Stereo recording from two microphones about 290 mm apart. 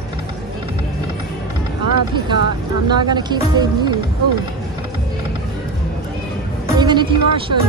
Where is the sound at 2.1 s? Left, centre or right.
Centre.